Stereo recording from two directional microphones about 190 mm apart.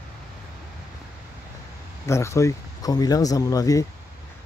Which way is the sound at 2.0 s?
15° left (ahead or behind).